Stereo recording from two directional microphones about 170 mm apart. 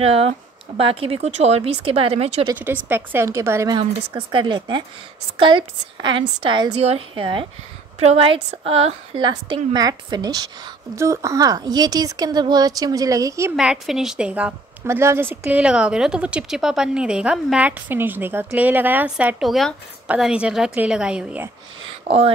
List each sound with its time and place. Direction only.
0.0 s speech: 35° right (ahead or behind)
2.5 s a woman's voice: 10° right (ahead or behind)
13.6 s a woman's voice: 5° right (ahead or behind)
22.0 s speech: 35° right (ahead or behind)